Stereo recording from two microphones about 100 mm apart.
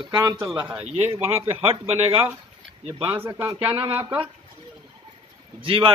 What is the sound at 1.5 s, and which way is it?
Speech, 85° right.